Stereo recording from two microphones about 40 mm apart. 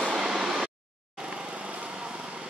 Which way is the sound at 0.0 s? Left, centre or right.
Centre.